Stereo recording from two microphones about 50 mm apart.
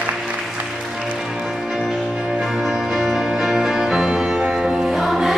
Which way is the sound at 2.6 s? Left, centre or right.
Centre.